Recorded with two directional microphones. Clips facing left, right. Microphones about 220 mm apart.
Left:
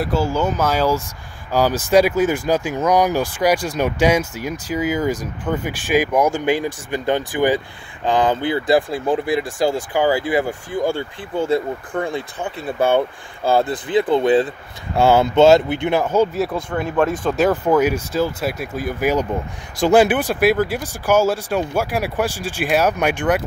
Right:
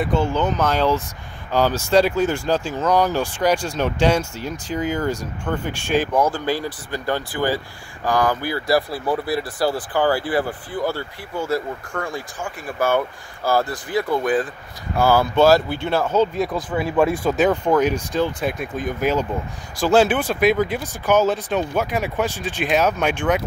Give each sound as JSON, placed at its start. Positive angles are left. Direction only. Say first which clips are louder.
{"t": 0.0, "sound": "speech", "louder": "left 1 dB", "side_deg": 5}
{"t": 11.9, "sound": "speech", "louder": "left 6 dB", "side_deg": 15}
{"t": 16.7, "sound": "speech", "louder": "right 1 dB", "side_deg": -5}